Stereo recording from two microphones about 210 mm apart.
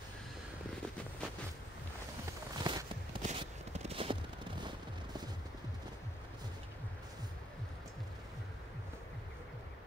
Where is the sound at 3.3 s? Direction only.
30° right (ahead or behind).